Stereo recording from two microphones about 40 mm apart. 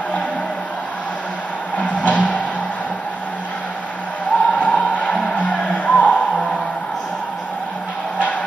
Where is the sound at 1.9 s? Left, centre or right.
Left.